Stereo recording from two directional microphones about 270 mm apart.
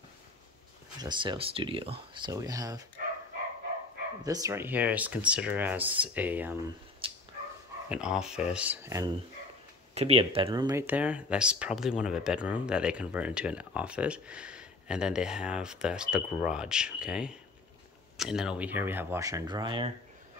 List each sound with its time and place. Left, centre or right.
1.0 s speech: centre
4.2 s speech: centre
7.0 s dog: centre
7.9 s speech: centre
9.9 s speech: right